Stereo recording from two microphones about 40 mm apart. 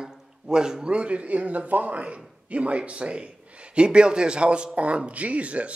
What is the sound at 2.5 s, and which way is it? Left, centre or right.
A man's voice, right.